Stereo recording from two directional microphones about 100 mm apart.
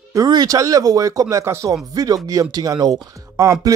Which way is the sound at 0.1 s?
40° right (ahead or behind).